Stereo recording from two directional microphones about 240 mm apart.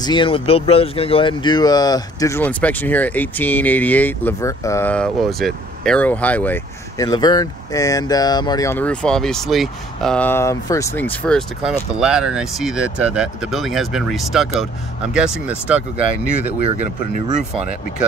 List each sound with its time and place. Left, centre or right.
0.0 s speech: centre